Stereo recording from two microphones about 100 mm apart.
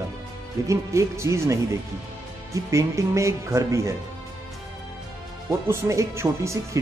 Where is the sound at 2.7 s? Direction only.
30° right (ahead or behind).